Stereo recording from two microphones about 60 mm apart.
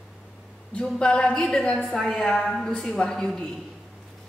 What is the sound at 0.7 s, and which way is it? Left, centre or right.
A woman's voice, centre.